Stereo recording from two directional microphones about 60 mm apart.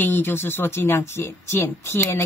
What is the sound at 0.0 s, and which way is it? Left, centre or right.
A woman's voice, left.